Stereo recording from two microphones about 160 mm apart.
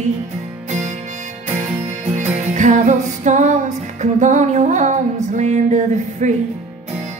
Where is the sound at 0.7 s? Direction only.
45° right (ahead or behind).